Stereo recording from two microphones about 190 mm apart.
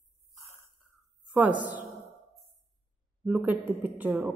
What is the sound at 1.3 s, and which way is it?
Speech, 10° right (ahead or behind).